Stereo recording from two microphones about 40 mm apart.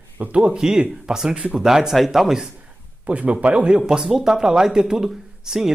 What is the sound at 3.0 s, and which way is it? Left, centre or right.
Speech, right.